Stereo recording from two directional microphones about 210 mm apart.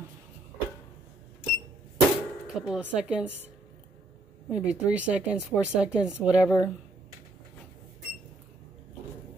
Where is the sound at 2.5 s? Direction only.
5° right (ahead or behind).